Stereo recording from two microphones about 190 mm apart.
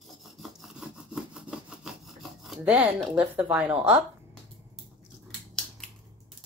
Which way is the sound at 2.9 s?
5° right (ahead or behind).